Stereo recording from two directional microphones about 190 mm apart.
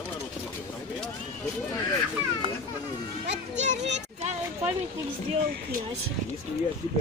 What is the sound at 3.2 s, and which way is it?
Children playing, 40° right (ahead or behind).